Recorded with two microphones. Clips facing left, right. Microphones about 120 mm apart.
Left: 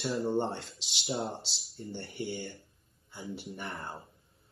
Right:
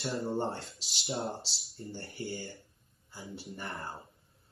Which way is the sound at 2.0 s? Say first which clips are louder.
Left 3 dB; 60° left (ahead or behind).